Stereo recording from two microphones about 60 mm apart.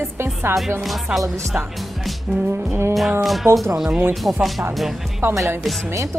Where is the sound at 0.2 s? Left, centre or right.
Right.